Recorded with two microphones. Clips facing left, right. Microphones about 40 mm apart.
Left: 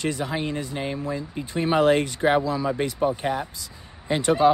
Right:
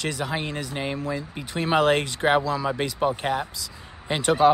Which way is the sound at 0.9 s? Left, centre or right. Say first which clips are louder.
Even; right.